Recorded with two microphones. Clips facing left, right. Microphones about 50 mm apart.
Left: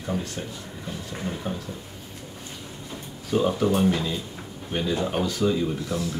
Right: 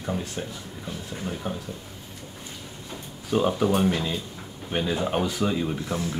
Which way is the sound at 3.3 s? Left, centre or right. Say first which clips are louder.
Even; centre.